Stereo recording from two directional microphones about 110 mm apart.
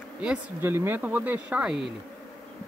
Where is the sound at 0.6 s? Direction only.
20° right (ahead or behind).